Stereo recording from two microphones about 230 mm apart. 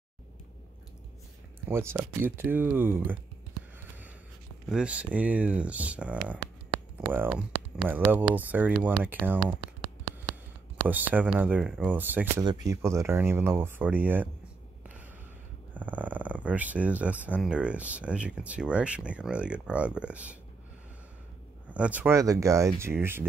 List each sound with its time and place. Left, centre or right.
1.7 s speech: centre
4.6 s speech: centre
9.8 s a sound: centre
10.9 s speech: centre
15.7 s speech: centre
21.6 s speech: centre